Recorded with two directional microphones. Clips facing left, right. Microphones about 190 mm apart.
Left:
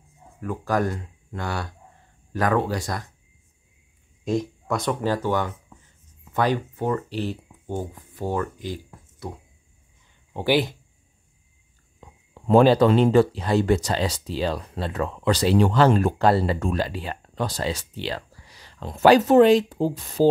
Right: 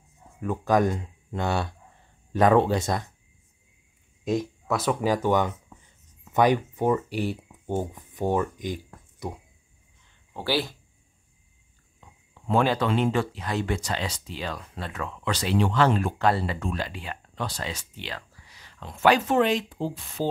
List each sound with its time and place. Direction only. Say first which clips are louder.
0.4 s speech: right 2 dB; 20° right (ahead or behind)
4.2 s speech: left 1 dB; centre (ahead or behind)
10.3 s speech: left 6 dB; 15° left (ahead or behind)
12.4 s speech: left 8 dB; 35° left (ahead or behind)